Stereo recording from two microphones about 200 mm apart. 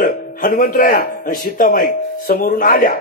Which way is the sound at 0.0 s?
45° left (ahead or behind).